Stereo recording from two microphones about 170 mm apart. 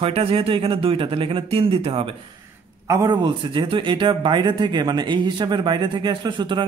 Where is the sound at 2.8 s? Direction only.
20° right (ahead or behind).